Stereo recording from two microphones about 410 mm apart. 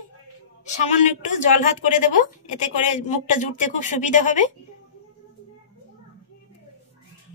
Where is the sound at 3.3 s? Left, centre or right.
Centre.